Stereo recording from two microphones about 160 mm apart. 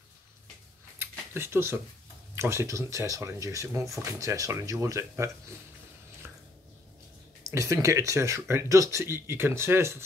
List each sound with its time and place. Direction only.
0.9 s a sound: 15° right (ahead or behind)
2.3 s speech: 15° right (ahead or behind)
7.5 s speech: 20° right (ahead or behind)